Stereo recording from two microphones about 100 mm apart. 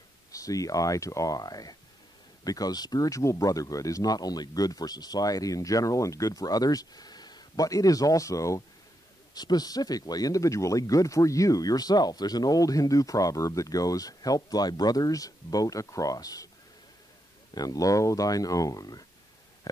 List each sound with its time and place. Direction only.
0.3 s speech: 35° left (ahead or behind)
17.6 s speech: 35° left (ahead or behind)